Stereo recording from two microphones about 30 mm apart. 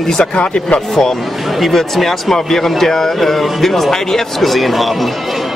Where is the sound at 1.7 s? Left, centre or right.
Centre.